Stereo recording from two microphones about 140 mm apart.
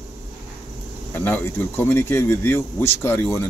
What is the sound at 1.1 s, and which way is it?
Speech, 15° left (ahead or behind).